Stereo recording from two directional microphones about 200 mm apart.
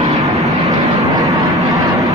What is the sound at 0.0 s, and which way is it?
Vehicle, 15° right (ahead or behind).